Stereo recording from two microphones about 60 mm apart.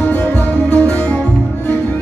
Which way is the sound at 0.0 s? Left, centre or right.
Left.